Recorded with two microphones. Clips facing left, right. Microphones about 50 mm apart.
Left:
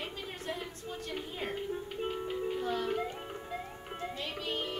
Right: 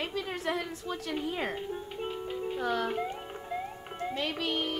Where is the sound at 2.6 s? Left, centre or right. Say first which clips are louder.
Right 6 dB; right.